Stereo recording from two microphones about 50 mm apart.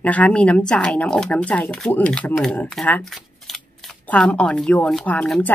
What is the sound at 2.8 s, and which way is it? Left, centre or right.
Speech, centre.